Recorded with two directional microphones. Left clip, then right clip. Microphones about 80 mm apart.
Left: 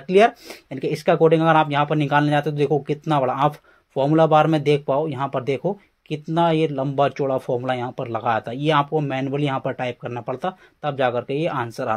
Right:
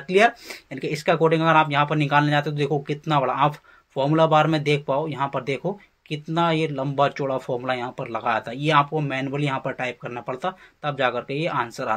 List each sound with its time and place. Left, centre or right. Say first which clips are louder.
0.0 s speech: left 2 dB; left